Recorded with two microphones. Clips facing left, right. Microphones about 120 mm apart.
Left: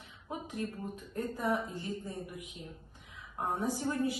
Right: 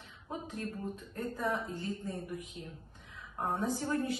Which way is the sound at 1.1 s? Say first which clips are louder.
Left 2 dB; 15° left (ahead or behind).